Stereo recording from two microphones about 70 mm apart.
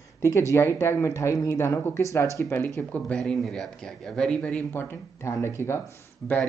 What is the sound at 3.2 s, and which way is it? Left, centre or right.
Speech, centre.